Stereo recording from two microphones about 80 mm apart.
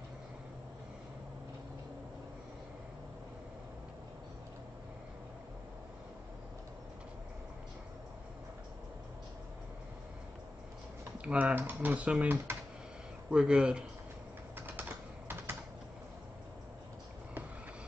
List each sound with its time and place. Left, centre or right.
11.1 s speech: centre
14.8 s typing: right